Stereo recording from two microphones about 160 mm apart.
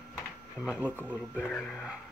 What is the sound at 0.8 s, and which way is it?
Speech, 10° right (ahead or behind).